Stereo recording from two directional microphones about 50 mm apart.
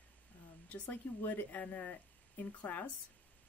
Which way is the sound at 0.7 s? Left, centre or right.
Left.